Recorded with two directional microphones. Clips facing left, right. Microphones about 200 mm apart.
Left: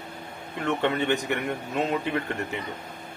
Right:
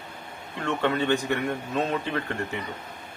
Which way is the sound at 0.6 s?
20° left (ahead or behind).